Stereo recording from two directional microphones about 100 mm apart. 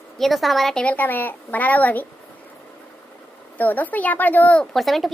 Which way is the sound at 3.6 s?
15° left (ahead or behind).